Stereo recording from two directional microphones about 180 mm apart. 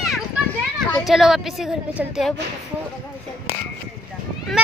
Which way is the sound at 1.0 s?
Centre (ahead or behind).